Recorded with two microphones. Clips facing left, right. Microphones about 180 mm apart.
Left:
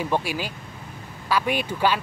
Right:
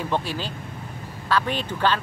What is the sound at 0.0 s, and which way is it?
Speech, 10° left (ahead or behind).